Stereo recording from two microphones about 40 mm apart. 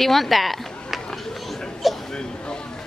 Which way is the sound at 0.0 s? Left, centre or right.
Centre.